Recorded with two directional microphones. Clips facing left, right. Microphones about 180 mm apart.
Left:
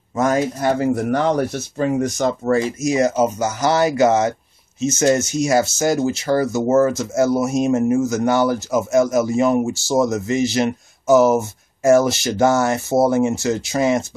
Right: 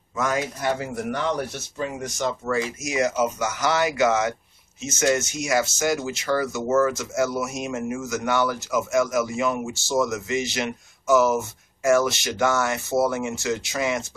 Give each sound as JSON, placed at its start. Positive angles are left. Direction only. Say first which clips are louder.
{"t": 0.1, "sound": "speech", "louder": "left 7 dB", "side_deg": 40}